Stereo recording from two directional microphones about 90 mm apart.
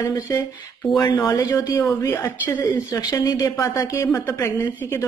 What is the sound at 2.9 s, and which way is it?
Speech, 40° left (ahead or behind).